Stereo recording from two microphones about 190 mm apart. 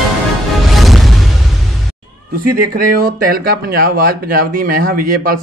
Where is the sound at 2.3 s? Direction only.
50° right (ahead or behind).